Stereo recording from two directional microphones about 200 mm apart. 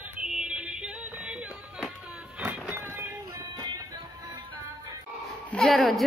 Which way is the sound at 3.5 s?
20° right (ahead or behind).